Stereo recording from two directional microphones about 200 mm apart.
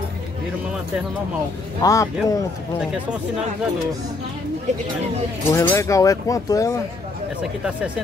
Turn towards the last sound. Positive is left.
turn(degrees=-5)  # may be behind; listen again after turning